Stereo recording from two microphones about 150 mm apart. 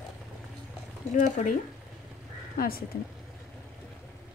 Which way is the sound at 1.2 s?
55° left (ahead or behind).